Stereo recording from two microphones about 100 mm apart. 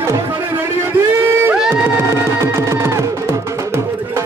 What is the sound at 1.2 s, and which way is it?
Music, 20° right (ahead or behind).